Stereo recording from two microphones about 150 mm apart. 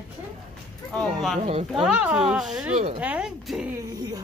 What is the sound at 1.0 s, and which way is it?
Speech, centre (ahead or behind).